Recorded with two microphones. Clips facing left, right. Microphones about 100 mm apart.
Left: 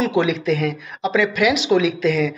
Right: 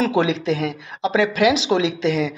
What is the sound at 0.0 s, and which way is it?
Speech, 30° right (ahead or behind).